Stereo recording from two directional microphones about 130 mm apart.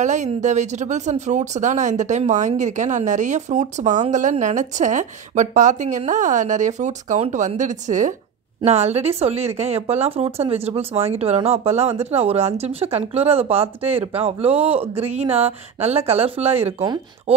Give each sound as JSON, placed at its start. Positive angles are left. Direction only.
{"t": 0.0, "sound": "speech", "side_deg": -65}
{"t": 8.6, "sound": "speech", "side_deg": -55}